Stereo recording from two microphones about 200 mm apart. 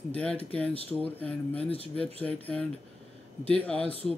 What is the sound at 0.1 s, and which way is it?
Speech, 5° left (ahead or behind).